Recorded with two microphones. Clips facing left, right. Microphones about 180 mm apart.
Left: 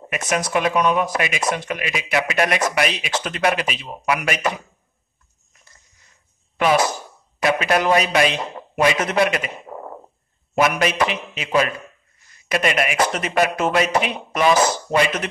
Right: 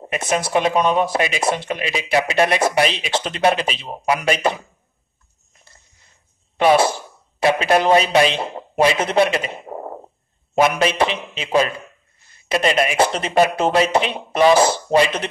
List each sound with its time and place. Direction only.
0.0 s speech: 30° right (ahead or behind)
6.6 s a man's voice: 30° right (ahead or behind)